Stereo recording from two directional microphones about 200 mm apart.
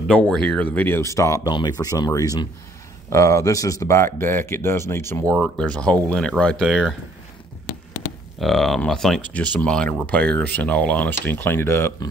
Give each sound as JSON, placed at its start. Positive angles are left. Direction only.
{"t": 0.1, "sound": "speech", "side_deg": 5}
{"t": 8.4, "sound": "speech", "side_deg": 0}